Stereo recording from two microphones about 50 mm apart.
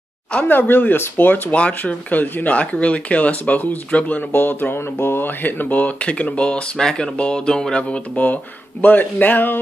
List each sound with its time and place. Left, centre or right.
0.5 s speech: left
1.5 s speech: left
4.3 s speech: left; by 8.0 s centre
8.8 s speech: left